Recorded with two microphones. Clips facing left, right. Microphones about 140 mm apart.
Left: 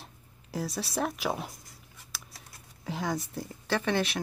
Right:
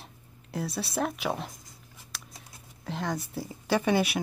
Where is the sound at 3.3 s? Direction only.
10° right (ahead or behind).